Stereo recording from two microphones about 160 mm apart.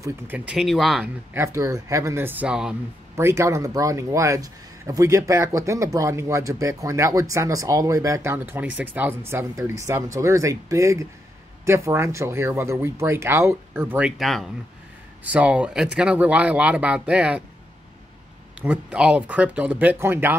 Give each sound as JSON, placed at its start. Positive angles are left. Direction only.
{"t": 0.0, "sound": "speech", "side_deg": -10}
{"t": 0.6, "sound": "speech", "side_deg": 0}
{"t": 1.3, "sound": "speech", "side_deg": -20}
{"t": 3.2, "sound": "speech", "side_deg": -15}
{"t": 18.6, "sound": "speech", "side_deg": -10}